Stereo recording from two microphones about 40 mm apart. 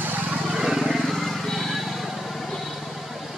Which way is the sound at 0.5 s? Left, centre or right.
Centre.